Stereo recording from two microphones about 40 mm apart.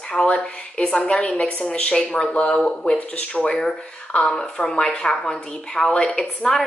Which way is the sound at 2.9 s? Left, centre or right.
Left.